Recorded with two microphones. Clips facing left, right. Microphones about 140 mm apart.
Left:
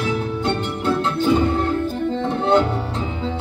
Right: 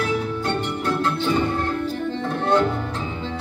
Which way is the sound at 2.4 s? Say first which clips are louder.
Left 2 dB; 25° left (ahead or behind).